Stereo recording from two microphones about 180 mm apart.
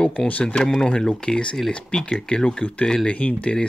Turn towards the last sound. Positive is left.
turn(degrees=5)  # may be behind; listen again after turning